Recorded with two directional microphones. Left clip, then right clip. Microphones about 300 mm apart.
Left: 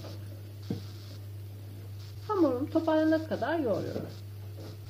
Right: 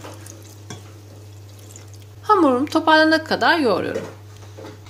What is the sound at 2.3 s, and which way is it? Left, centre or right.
A woman's voice, right.